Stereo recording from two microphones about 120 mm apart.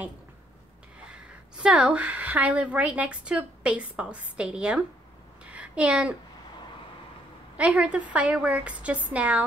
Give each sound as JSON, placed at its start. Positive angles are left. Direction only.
{"t": 1.1, "sound": "a woman's voice", "side_deg": -10}
{"t": 5.4, "sound": "a sound", "side_deg": -10}
{"t": 7.5, "sound": "speech", "side_deg": -10}